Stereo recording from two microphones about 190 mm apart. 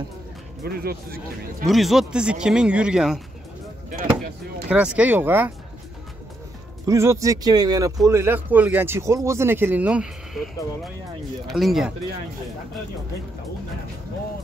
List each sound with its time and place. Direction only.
0.7 s speech: 55° right (ahead or behind)
1.7 s speech: centre (ahead or behind)
4.6 s speech: 5° right (ahead or behind)
6.9 s speech: 15° right (ahead or behind)